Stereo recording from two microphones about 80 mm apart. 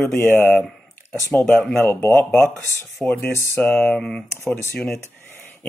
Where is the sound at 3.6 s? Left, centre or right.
Centre.